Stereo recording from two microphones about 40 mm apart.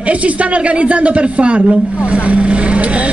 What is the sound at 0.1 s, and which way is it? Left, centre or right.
Speech, right.